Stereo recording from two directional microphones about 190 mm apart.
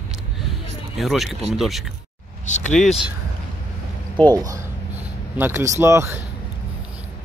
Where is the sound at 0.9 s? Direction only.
Centre (ahead or behind).